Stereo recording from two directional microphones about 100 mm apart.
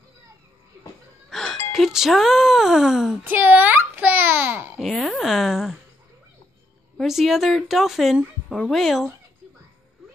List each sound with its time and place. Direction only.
1.3 s music: 5° left (ahead or behind)
1.7 s speech: 5° right (ahead or behind)
3.3 s a child's voice: 20° right (ahead or behind)
4.7 s speech: centre (ahead or behind)
7.0 s speech: centre (ahead or behind)